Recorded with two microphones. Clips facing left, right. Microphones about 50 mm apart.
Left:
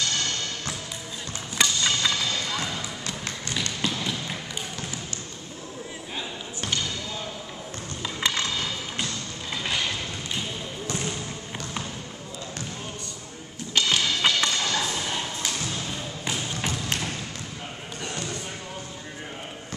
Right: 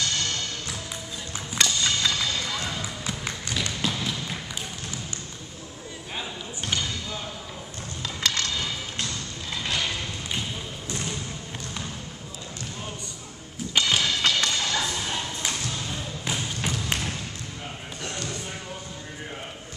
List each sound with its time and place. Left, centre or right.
1.6 s music: centre
2.8 s bouncing: centre
3.8 s a sound: centre
6.1 s basketball bounce: centre
8.2 s a sound: centre
9.6 s a sound: centre
13.7 s music: centre
14.2 s whip: centre
15.4 s bouncing: centre